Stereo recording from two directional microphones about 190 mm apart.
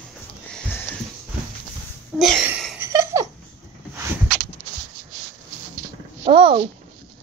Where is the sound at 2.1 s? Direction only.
Centre (ahead or behind).